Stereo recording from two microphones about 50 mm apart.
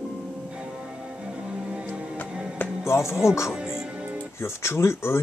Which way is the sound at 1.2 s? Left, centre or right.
Centre.